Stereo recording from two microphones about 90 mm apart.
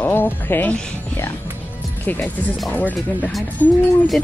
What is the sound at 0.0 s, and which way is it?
Speech, 20° left (ahead or behind).